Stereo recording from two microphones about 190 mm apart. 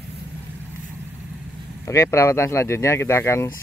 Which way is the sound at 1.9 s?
15° left (ahead or behind).